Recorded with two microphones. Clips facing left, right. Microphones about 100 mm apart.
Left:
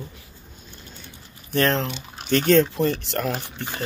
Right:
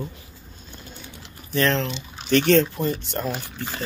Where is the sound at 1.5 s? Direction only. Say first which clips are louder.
Even; 45° left (ahead or behind).